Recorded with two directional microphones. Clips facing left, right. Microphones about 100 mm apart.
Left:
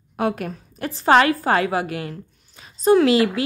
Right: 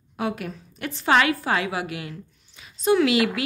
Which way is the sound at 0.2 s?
50° left (ahead or behind).